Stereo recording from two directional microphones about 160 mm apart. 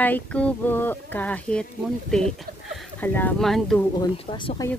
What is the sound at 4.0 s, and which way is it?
Speech, 30° left (ahead or behind).